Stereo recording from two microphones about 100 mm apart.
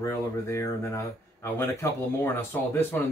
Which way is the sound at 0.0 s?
30° left (ahead or behind).